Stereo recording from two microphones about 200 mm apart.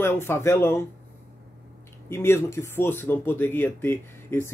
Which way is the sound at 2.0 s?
10° left (ahead or behind).